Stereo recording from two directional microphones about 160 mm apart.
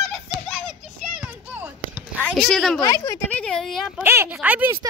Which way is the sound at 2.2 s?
5° left (ahead or behind).